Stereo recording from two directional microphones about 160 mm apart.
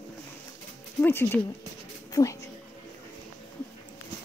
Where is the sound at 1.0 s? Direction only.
15° left (ahead or behind).